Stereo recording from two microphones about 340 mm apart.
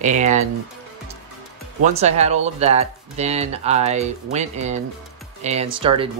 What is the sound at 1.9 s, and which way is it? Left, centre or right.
Speech, centre.